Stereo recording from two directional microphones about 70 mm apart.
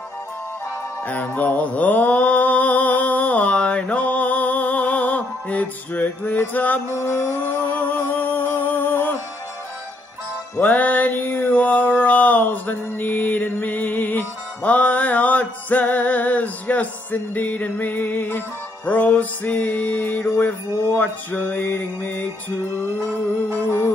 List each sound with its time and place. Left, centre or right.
1.0 s mantra: left
6.9 s music: left
10.6 s mantra: left